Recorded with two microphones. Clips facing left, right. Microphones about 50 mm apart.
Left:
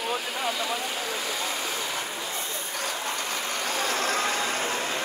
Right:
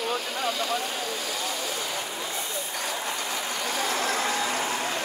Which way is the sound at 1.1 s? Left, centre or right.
Left.